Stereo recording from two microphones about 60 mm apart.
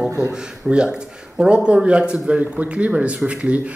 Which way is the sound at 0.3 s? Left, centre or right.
Centre.